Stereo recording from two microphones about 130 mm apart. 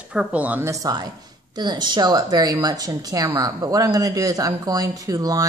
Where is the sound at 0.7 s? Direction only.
25° right (ahead or behind).